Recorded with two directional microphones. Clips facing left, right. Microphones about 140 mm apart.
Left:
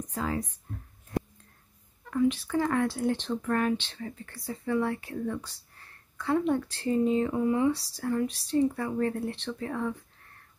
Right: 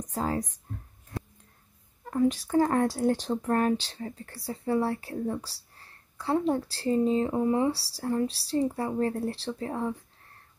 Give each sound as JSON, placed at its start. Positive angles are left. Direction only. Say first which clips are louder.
{"t": 0.1, "sound": "speech", "louder": "right 2 dB", "side_deg": -40}
{"t": 2.0, "sound": "speech", "louder": "right 1 dB", "side_deg": -40}